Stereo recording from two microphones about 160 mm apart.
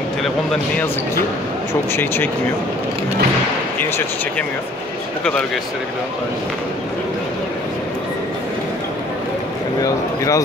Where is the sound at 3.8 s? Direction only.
15° left (ahead or behind).